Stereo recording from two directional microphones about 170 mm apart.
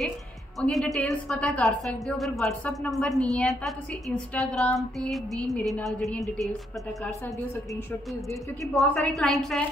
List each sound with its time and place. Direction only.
0.6 s a woman's voice: centre (ahead or behind)
8.7 s a woman's voice: centre (ahead or behind)